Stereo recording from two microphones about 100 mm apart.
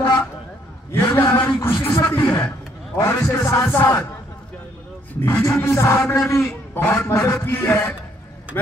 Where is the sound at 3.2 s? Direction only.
30° left (ahead or behind).